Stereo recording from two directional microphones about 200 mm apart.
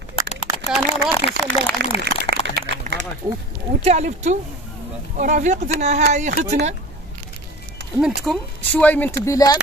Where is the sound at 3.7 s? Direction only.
35° right (ahead or behind).